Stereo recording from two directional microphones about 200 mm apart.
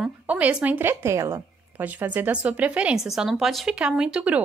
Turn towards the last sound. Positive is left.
turn(degrees=-5)  # may be behind; listen again after turning